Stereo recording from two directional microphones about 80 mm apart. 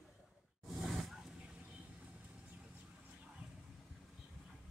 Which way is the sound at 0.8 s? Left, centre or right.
Centre.